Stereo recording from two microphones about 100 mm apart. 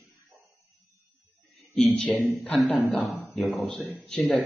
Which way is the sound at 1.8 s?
10° left (ahead or behind).